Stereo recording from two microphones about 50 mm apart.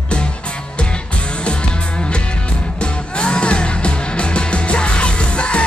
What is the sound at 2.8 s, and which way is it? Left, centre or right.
Music, centre.